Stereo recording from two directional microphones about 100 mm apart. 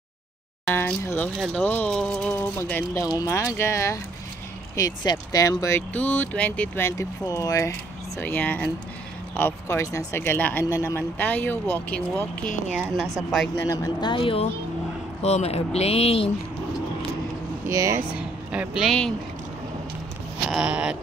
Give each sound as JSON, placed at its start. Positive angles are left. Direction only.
{"t": 1.0, "sound": "speech", "side_deg": 20}
{"t": 2.3, "sound": "speech", "side_deg": 20}
{"t": 2.9, "sound": "speech", "side_deg": 40}
{"t": 3.3, "sound": "speech", "side_deg": 30}
{"t": 5.9, "sound": "speech", "side_deg": 15}
{"t": 6.8, "sound": "speech", "side_deg": 30}
{"t": 8.2, "sound": "speech", "side_deg": 15}
{"t": 12.9, "sound": "a woman's voice", "side_deg": 0}
{"t": 13.7, "sound": "speech", "side_deg": 30}
{"t": 14.0, "sound": "speech", "side_deg": 60}
{"t": 15.2, "sound": "speech", "side_deg": 90}
{"t": 17.6, "sound": "speech", "side_deg": -30}
{"t": 18.1, "sound": "speech", "side_deg": -10}
{"t": 20.4, "sound": "speech", "side_deg": -5}